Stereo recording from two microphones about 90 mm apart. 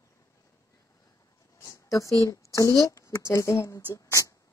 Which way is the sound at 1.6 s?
35° left (ahead or behind).